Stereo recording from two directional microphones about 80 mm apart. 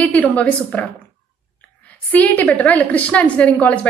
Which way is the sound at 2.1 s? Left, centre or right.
Left.